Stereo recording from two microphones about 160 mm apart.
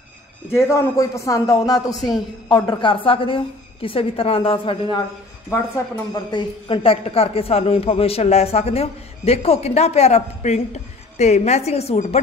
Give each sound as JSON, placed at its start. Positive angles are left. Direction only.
{"t": 0.6, "sound": "a man's voice", "side_deg": 20}
{"t": 6.3, "sound": "a woman's voice", "side_deg": 35}